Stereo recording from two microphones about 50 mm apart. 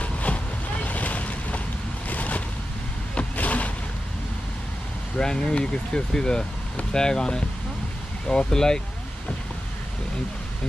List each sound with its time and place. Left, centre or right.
0.0 s boat: left
2.0 s a sound: left
3.2 s vehicle: left
5.1 s speech: centre